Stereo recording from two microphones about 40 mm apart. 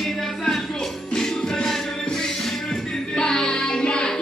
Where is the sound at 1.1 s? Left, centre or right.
Centre.